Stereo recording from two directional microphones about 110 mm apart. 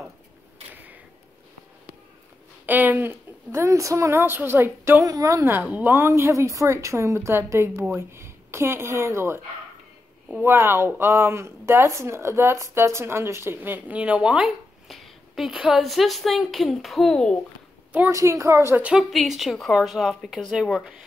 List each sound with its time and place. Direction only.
2.6 s speech: 15° right (ahead or behind)
5.0 s speech: 30° right (ahead or behind)
10.4 s a woman's voice: 20° right (ahead or behind); by 17.4 s 5° left (ahead or behind)
18.1 s speech: 30° right (ahead or behind)
18.8 s a woman's voice: 10° right (ahead or behind)